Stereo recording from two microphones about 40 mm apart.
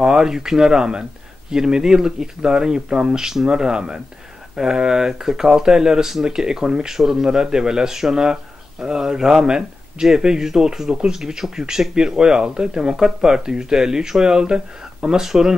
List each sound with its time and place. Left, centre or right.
0.0 s speech: centre